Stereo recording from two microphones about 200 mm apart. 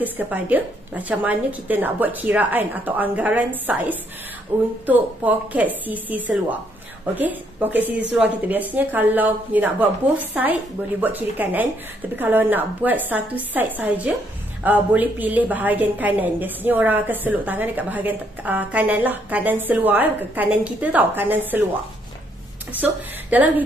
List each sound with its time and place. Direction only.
0.0 s a woman's voice: 10° right (ahead or behind)
23.3 s a woman's voice: 10° right (ahead or behind)